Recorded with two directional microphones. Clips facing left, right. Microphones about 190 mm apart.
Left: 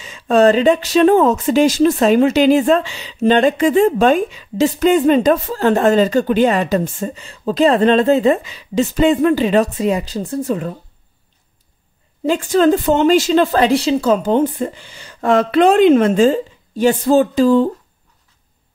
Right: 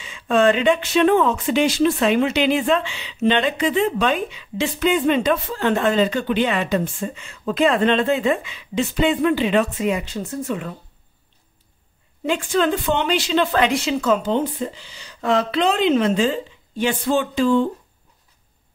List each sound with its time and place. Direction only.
0.0 s speech: 40° left (ahead or behind)
12.3 s speech: 40° left (ahead or behind)